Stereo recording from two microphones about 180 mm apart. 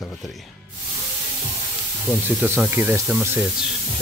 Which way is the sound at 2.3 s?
10° right (ahead or behind).